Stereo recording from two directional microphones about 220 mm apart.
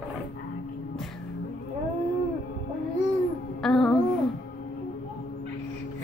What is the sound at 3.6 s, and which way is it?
Music, centre (ahead or behind).